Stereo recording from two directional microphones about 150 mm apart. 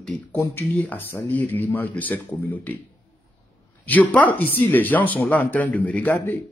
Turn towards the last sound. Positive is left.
turn(degrees=15)  # may be behind; listen again after turning